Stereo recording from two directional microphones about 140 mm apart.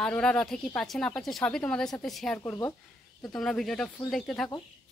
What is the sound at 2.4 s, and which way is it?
Speech, 20° left (ahead or behind).